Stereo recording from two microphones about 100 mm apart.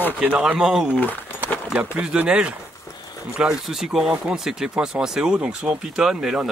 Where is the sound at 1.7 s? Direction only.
10° right (ahead or behind).